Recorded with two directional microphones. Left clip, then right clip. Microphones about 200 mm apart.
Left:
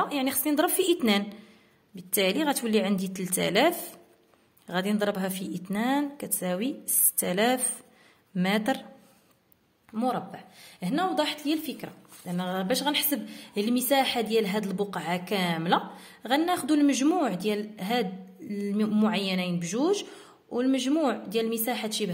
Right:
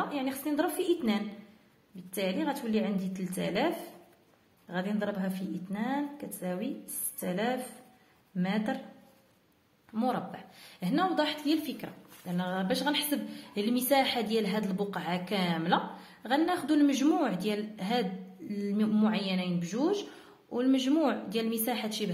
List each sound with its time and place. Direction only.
0.0 s a woman's voice: 40° left (ahead or behind)
9.9 s a woman's voice: 25° left (ahead or behind)
20.4 s a woman's voice: 25° left (ahead or behind)